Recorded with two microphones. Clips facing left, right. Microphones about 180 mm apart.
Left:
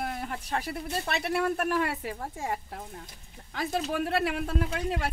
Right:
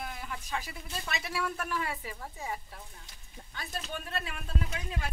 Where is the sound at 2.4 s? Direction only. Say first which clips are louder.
Left 6 dB; 75° left (ahead or behind).